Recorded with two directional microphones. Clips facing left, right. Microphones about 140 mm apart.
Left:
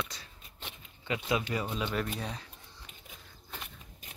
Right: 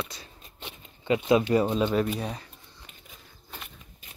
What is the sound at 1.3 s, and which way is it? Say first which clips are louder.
Speech: right 11 dB; 35° right (ahead or behind).